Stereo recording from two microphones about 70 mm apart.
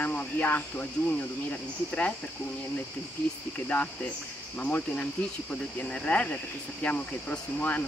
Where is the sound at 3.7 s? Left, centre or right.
Left.